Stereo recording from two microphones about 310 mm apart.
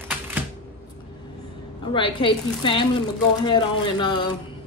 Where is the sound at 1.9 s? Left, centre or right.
Centre.